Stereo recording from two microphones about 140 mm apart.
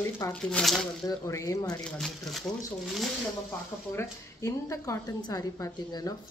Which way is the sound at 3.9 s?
20° left (ahead or behind).